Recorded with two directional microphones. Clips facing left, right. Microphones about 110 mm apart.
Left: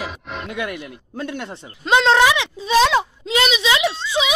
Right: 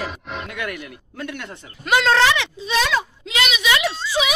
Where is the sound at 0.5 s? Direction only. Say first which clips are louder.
Left 6 dB; 20° left (ahead or behind).